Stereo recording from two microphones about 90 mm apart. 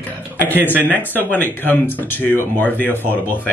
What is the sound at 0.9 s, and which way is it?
Speech, 20° left (ahead or behind).